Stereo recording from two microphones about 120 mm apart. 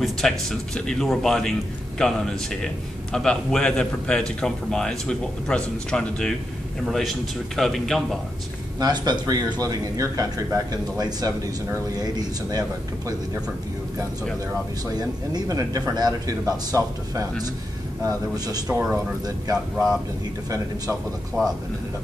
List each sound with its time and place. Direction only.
0.0 s a man's voice: 5° left (ahead or behind)
8.7 s speech: 35° right (ahead or behind)
15.0 s speech: 30° right (ahead or behind)
18.7 s speech: 10° right (ahead or behind)
19.2 s speech: 30° right (ahead or behind)